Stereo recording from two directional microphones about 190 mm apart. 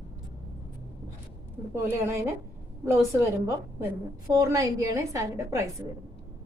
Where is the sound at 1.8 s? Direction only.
15° right (ahead or behind).